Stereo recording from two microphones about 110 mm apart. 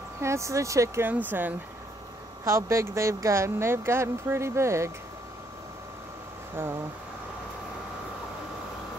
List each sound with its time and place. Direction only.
0.2 s speech: 25° right (ahead or behind)
1.0 s speech: 15° right (ahead or behind)
6.6 s speech: 20° right (ahead or behind)